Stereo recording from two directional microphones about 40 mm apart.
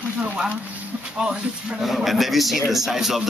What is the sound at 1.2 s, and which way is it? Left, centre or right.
Speech, centre.